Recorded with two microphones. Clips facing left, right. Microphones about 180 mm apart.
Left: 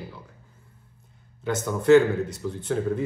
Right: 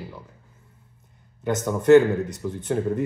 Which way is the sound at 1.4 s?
20° right (ahead or behind).